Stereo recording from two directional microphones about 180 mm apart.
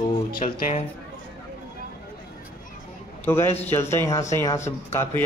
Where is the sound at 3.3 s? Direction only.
15° left (ahead or behind).